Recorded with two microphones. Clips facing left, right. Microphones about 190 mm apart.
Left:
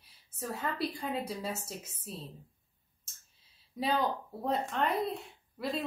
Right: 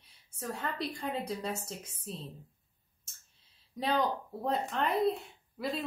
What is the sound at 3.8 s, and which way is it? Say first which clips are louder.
Speech: even; 5° left (ahead or behind).